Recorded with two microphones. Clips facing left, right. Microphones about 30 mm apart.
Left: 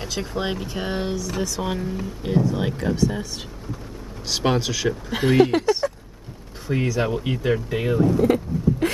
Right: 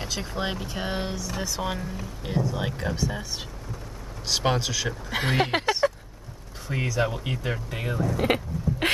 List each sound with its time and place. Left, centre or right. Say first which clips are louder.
0.0 s speech: left 3 dB; centre
4.3 s speech: left 3 dB; centre
5.1 s speech: left 6 dB; centre
5.5 s speech: left 5 dB; right
6.7 s speech: left 4 dB; centre
8.2 s a sound: left 5 dB; right